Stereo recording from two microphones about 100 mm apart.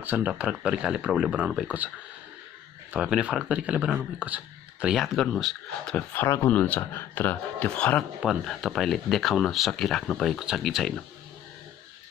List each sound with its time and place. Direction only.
0.0 s speech: 15° right (ahead or behind)
2.9 s speech: 10° right (ahead or behind)
4.9 s speech: centre (ahead or behind)
6.2 s speech: 30° left (ahead or behind)
6.5 s speech: 15° left (ahead or behind)
8.2 s speech: centre (ahead or behind)